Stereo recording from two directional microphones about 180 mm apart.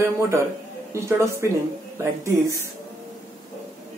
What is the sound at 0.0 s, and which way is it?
Speech, 15° right (ahead or behind).